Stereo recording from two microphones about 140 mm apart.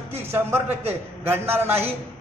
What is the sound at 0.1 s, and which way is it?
A man's voice, 15° right (ahead or behind).